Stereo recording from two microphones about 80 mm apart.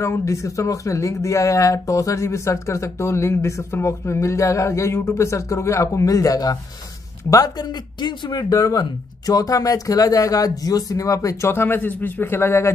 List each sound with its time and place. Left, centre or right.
0.0 s speech: left
11.5 s a man's voice: left